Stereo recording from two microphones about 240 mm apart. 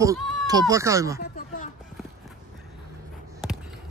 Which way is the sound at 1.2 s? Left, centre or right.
Left.